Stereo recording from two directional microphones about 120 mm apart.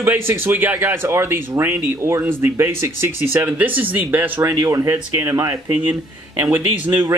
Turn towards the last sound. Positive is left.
turn(degrees=-20)  # may be behind; listen again after turning